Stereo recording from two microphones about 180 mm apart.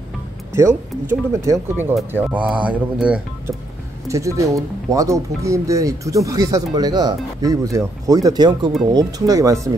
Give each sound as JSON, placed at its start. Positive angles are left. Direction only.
{"t": 1.3, "sound": "speech", "side_deg": -15}